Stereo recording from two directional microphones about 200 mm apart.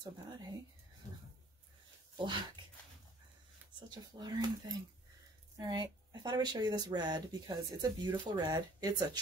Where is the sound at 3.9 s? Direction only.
20° right (ahead or behind).